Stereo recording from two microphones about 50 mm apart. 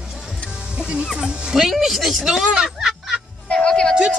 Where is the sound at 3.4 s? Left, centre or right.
Centre.